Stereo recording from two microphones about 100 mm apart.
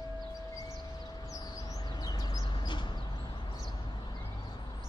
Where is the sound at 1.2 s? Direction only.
35° left (ahead or behind); by 2.9 s 50° left (ahead or behind).